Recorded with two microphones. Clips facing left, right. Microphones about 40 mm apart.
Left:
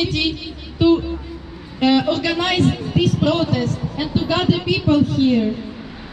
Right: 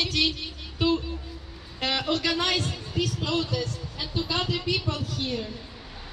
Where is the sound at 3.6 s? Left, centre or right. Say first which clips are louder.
Left 10 dB; left.